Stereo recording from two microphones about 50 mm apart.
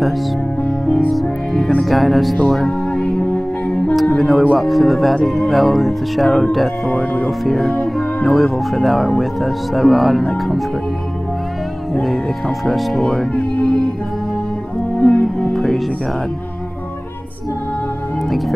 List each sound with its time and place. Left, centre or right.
0.7 s music: centre
1.8 s speech: centre
2.3 s music: centre
3.3 s music: centre
3.9 s music: centre
4.6 s speech: centre
6.9 s speech: left
7.2 s speech: centre
11.9 s speech: centre
15.0 s music: centre